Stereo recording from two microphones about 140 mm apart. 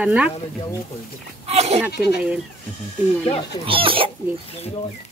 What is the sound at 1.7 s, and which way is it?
Speech, 10° right (ahead or behind).